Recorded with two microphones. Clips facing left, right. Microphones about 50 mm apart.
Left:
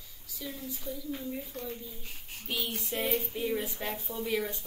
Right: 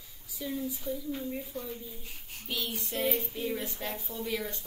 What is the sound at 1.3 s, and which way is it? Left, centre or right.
Speech, centre.